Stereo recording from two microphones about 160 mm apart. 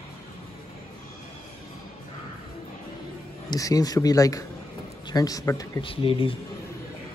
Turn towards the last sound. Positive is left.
turn(degrees=35)  # may be behind; listen again after turning